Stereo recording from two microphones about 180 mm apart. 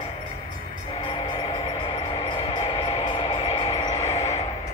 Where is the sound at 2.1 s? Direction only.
35° left (ahead or behind).